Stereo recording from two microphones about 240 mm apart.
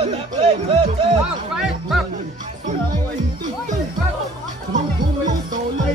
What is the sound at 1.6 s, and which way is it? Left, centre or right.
Music, centre.